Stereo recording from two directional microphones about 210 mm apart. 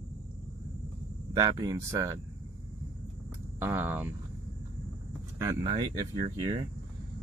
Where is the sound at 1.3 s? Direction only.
20° right (ahead or behind).